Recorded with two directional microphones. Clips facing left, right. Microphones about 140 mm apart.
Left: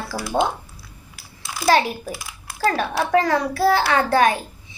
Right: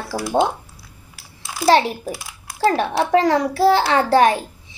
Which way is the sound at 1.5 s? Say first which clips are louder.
Right 3 dB; 25° right (ahead or behind).